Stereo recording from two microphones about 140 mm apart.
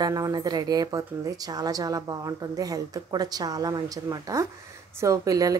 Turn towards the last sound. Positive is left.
turn(degrees=-25)  # may be behind; listen again after turning